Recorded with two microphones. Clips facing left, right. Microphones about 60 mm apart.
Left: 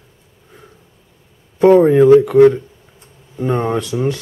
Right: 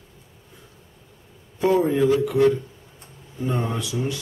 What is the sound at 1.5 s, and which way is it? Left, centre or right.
Speech, left.